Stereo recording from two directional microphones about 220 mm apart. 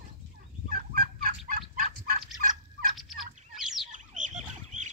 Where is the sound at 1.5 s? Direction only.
40° right (ahead or behind).